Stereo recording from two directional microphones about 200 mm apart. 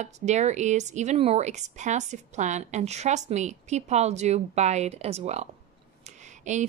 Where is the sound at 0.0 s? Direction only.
35° right (ahead or behind).